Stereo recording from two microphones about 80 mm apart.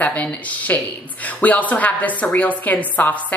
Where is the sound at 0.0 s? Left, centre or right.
Centre.